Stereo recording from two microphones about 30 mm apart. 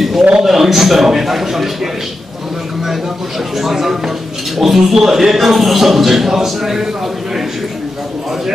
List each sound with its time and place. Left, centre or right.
0.4 s a man's voice: centre
3.5 s a man's voice: centre